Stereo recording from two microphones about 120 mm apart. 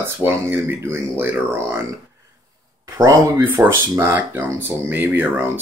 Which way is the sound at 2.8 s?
25° right (ahead or behind).